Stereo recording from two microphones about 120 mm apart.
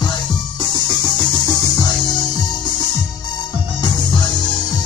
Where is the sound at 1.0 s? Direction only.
30° left (ahead or behind).